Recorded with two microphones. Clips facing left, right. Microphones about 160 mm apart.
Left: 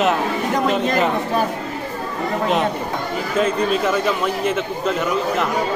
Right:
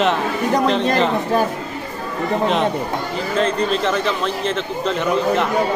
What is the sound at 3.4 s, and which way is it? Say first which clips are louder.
A man's voice: left 1 dB; 10° left (ahead or behind).